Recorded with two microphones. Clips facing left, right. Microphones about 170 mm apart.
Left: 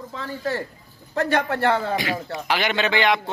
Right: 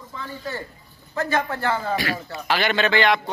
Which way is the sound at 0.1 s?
90° left.